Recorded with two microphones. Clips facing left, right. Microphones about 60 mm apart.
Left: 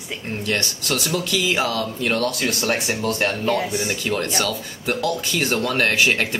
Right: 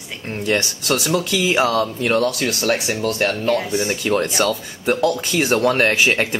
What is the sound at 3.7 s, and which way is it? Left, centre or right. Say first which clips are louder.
Speech: right 4 dB; right.